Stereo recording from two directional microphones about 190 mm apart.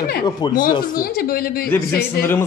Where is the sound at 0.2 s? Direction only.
20° left (ahead or behind).